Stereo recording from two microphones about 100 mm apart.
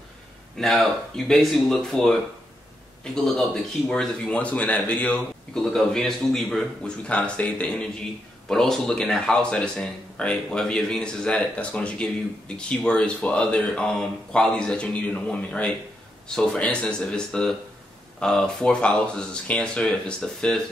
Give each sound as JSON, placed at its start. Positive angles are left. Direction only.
{"t": 0.6, "sound": "speech", "side_deg": 5}